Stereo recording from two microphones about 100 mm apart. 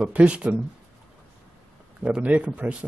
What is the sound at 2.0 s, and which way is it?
Speech, 15° right (ahead or behind).